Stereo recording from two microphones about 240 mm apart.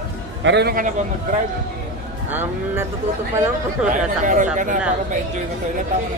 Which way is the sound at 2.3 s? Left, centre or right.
Centre.